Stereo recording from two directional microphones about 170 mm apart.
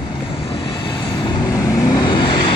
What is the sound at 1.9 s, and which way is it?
Vehicle, 25° left (ahead or behind).